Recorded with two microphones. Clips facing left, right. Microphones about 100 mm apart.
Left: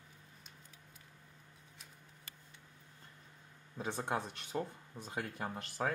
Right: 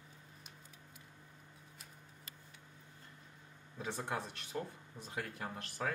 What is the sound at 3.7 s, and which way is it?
Speech, 15° left (ahead or behind).